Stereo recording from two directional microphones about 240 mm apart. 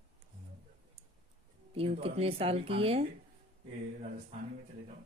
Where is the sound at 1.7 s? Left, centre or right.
Right.